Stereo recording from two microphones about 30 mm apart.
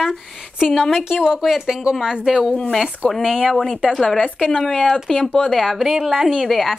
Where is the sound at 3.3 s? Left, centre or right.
Right.